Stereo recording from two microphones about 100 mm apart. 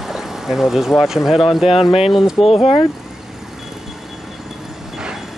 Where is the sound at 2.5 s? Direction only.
75° left (ahead or behind).